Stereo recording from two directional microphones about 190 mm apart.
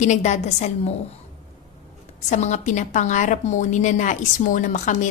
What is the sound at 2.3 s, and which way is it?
A woman's voice, 40° left (ahead or behind).